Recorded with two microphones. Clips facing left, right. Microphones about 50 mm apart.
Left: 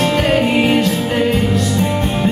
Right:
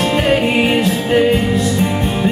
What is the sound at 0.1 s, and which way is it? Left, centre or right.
Music, centre.